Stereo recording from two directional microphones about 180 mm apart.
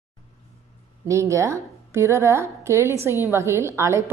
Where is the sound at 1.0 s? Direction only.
15° right (ahead or behind).